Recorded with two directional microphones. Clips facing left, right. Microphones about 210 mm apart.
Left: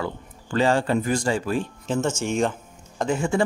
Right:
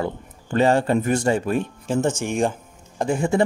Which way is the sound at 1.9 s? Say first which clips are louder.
Right 2 dB; 15° right (ahead or behind).